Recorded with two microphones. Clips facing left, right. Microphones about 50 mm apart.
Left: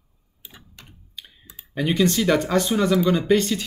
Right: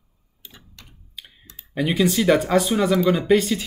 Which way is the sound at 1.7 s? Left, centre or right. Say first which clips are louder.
Even; centre.